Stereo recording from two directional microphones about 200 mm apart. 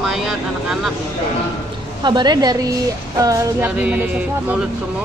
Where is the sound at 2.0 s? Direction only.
20° right (ahead or behind).